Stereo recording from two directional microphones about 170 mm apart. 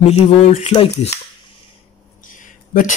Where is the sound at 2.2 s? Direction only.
50° left (ahead or behind).